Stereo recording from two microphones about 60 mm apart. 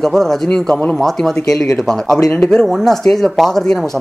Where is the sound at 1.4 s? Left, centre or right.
Left.